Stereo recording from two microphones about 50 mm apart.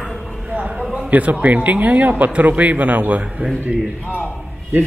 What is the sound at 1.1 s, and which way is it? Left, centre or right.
Speech, right.